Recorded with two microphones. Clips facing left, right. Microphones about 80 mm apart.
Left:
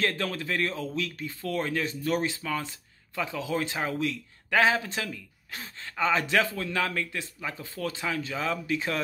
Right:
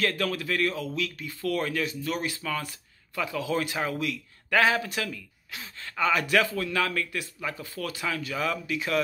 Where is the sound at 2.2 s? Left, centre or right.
Left.